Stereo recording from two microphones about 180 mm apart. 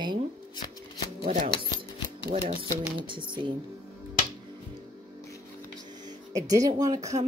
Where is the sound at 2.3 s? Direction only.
35° right (ahead or behind).